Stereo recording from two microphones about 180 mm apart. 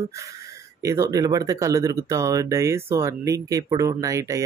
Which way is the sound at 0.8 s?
20° right (ahead or behind).